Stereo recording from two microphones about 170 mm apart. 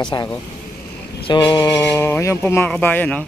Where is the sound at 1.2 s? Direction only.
30° left (ahead or behind).